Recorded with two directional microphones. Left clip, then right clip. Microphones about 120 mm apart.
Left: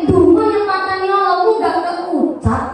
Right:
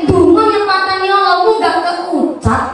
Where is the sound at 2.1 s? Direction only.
35° left (ahead or behind).